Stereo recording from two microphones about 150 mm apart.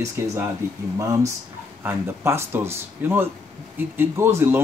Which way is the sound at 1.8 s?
15° right (ahead or behind).